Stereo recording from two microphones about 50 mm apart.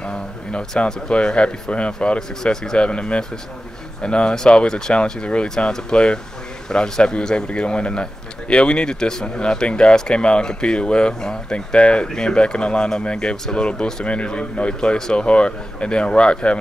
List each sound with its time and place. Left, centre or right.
0.0 s a man's voice: centre